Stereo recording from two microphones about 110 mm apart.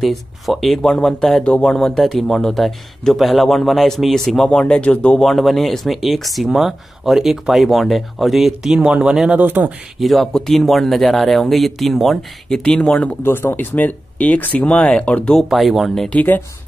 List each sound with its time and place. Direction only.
0.0 s speech: centre (ahead or behind); by 9.7 s 15° right (ahead or behind)
9.9 s speech: centre (ahead or behind)
13.2 s speech: 20° left (ahead or behind)
15.5 s speech: centre (ahead or behind)
16.1 s speech: 15° left (ahead or behind)